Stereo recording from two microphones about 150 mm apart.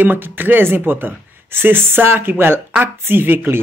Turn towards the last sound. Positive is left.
turn(degrees=-15)  # may be behind; listen again after turning